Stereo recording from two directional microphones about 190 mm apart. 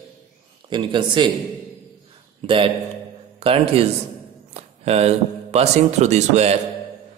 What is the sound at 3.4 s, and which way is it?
Speech, 30° right (ahead or behind).